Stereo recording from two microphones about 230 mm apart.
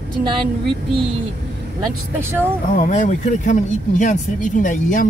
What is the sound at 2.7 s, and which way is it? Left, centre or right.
Speech, left.